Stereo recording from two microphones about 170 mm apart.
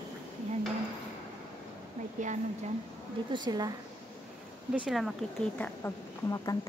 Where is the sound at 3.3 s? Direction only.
25° right (ahead or behind).